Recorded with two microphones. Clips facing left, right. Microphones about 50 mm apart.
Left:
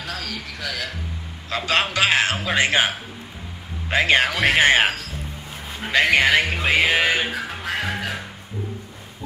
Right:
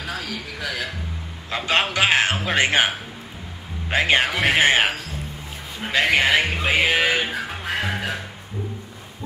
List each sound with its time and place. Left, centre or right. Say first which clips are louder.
0.0 s a man's voice: right 1 dB; centre
3.9 s a man's voice: left 1 dB; centre
5.9 s music: left 1 dB; centre